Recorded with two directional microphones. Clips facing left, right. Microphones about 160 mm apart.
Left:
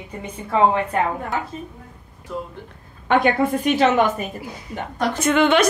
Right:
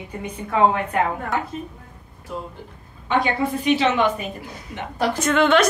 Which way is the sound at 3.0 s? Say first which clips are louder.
Left 4 dB; 55° left (ahead or behind).